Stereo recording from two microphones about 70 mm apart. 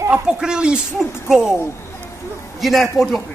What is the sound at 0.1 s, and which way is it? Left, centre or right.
Speech, centre.